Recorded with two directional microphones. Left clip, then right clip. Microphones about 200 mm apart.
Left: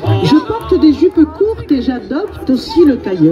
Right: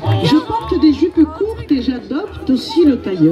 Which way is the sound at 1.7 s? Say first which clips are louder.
Left 3 dB; 50° left (ahead or behind).